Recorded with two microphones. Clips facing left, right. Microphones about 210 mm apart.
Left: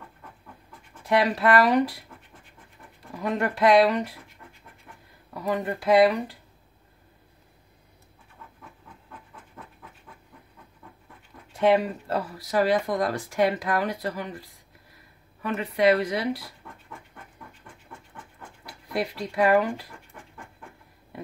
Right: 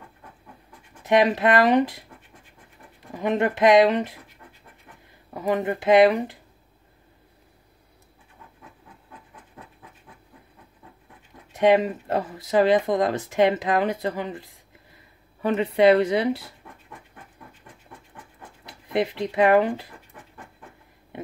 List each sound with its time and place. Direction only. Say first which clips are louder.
1.0 s speech: right 3 dB; 20° right (ahead or behind)
3.1 s speech: right 4 dB; 25° right (ahead or behind)
5.3 s speech: right 4 dB; 25° right (ahead or behind)
11.5 s speech: right 3 dB; 20° right (ahead or behind)
18.7 s speech: right 5 dB; 20° right (ahead or behind)